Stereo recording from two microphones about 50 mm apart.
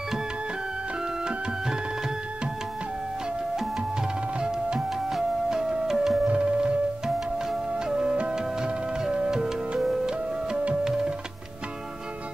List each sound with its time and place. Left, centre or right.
4.4 s music: centre
6.2 s music: right
7.7 s music: centre
10.8 s tabla: centre